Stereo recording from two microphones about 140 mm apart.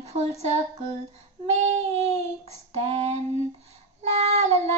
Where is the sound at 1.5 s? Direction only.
50° right (ahead or behind).